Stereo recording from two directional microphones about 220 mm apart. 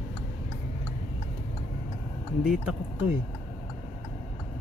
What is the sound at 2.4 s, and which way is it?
Speech, 5° right (ahead or behind).